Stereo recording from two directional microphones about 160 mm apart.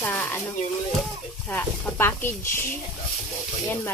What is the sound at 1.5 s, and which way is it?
Speech, 15° left (ahead or behind).